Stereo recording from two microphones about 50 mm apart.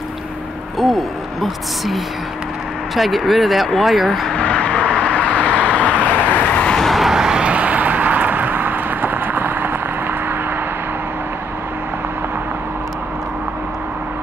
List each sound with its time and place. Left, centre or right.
0.7 s speech: centre
3.0 s speech: centre
4.4 s vehicle: left
6.8 s vehicle: centre; by 9.7 s right